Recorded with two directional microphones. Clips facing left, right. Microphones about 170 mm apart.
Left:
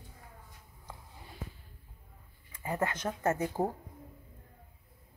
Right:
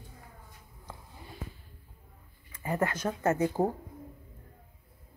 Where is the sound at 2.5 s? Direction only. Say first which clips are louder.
Right 3 dB; 20° left (ahead or behind).